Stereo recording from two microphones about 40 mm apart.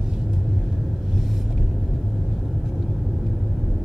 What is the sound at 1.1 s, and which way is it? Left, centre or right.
Vehicle, centre.